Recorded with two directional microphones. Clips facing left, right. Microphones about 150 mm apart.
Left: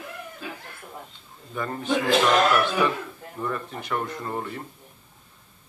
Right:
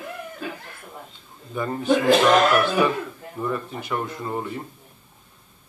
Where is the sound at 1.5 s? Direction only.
10° right (ahead or behind).